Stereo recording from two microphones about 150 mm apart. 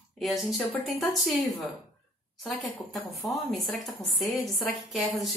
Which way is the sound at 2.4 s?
Centre (ahead or behind).